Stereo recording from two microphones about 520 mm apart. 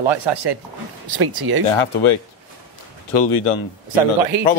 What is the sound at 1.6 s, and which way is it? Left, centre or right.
Speech, left.